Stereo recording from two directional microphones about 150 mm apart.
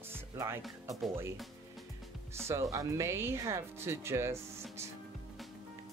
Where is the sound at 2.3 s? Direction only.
15° right (ahead or behind).